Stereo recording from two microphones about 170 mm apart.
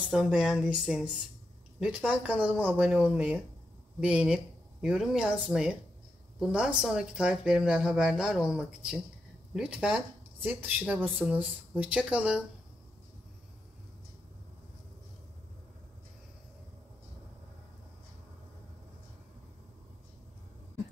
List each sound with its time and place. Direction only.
0.1 s speech: 5° right (ahead or behind)
11.1 s speech: centre (ahead or behind)